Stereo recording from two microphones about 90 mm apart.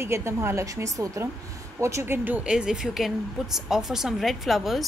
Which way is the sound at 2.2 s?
15° right (ahead or behind).